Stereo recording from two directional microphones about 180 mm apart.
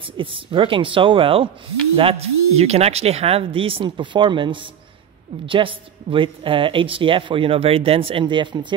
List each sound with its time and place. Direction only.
0.2 s speech: 30° right (ahead or behind)